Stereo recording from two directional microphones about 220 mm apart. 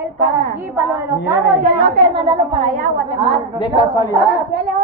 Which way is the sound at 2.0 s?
20° right (ahead or behind).